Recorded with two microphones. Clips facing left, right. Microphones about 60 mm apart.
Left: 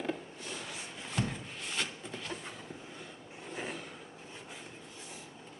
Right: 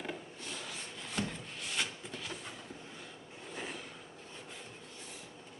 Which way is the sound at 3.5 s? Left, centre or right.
Centre.